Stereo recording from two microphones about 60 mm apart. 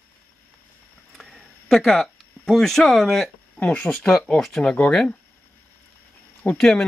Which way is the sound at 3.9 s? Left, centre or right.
Centre.